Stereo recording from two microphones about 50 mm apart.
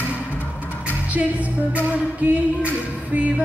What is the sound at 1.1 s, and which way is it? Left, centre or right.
Music, right.